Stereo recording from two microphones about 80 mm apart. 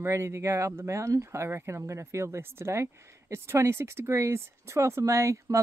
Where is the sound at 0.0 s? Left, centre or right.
Right.